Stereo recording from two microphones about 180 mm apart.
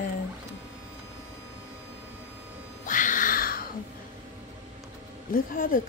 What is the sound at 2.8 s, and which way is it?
Music, 45° left (ahead or behind).